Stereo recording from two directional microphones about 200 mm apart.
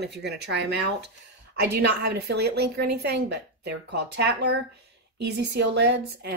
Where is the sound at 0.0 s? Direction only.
55° right (ahead or behind).